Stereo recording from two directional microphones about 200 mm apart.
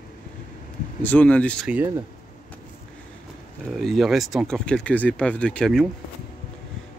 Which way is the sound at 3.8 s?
Centre (ahead or behind).